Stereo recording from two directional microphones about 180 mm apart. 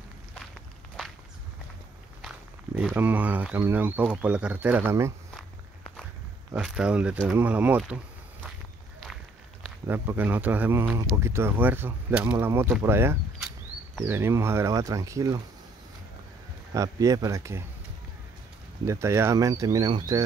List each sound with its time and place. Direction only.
2.2 s speech: 5° right (ahead or behind)
6.5 s speech: 5° right (ahead or behind)
9.8 s speech: 10° right (ahead or behind)
16.7 s speech: 20° right (ahead or behind)
18.9 s speech: 15° right (ahead or behind)